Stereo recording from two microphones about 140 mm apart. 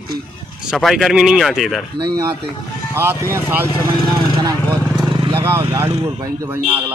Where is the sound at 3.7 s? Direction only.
35° left (ahead or behind).